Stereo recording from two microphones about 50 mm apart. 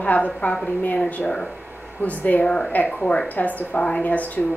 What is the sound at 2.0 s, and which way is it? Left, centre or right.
Speech, left.